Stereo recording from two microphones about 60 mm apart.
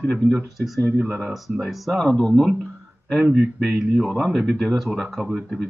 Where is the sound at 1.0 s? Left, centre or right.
Right.